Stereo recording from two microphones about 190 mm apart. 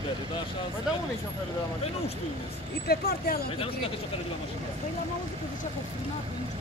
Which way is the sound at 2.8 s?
55° left (ahead or behind).